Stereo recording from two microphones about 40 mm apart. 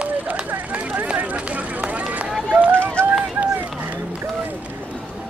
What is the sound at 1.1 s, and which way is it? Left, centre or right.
Vehicle, right.